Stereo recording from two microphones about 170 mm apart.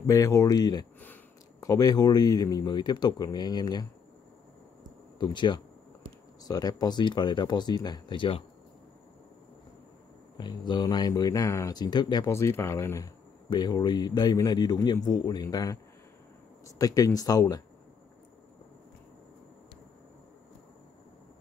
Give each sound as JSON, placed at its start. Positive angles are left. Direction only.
{"t": 0.0, "sound": "speech", "side_deg": 20}
{"t": 5.2, "sound": "speech", "side_deg": 25}
{"t": 10.3, "sound": "speech", "side_deg": 25}